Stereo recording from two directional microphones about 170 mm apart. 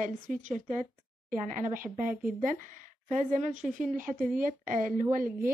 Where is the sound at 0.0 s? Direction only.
50° right (ahead or behind).